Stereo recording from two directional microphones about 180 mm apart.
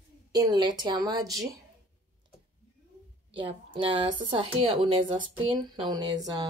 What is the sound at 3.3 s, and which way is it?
A woman's voice, 25° right (ahead or behind).